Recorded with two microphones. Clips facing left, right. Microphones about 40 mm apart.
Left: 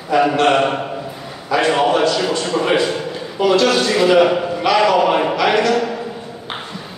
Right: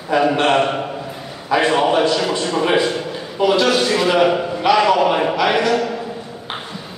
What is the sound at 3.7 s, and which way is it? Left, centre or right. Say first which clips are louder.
Speech: left 2 dB; centre.